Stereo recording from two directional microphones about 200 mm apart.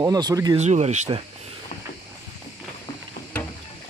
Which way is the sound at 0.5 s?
35° right (ahead or behind).